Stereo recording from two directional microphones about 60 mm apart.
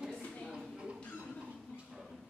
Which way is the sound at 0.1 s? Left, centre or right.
Centre.